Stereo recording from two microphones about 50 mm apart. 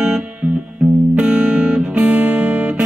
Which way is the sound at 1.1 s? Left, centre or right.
Centre.